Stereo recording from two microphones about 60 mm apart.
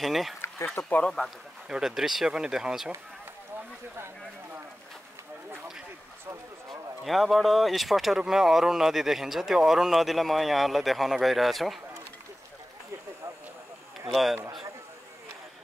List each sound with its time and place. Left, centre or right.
0.0 s speech: centre
0.7 s speech: left
1.7 s speech: centre
7.1 s speech: centre
14.1 s speech: centre